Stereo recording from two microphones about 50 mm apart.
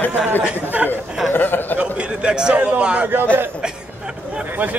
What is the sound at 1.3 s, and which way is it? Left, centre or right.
Speech, left.